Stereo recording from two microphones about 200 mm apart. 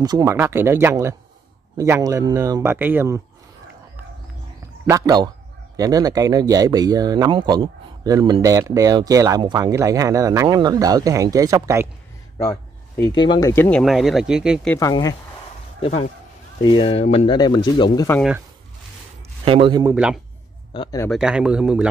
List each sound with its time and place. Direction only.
0.0 s speech: 20° right (ahead or behind)
4.8 s a man's voice: 15° right (ahead or behind)
13.0 s speech: 25° left (ahead or behind); by 14.7 s 5° right (ahead or behind)
14.7 s speech: 15° left (ahead or behind)
15.8 s speech: 30° left (ahead or behind)
19.4 s a man's voice: 25° right (ahead or behind)
19.8 s speech: 10° right (ahead or behind)
20.7 s speech: 25° left (ahead or behind)
21.1 s speech: 5° right (ahead or behind)